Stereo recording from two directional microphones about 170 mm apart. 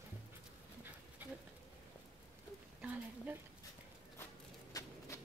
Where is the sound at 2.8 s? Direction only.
10° right (ahead or behind).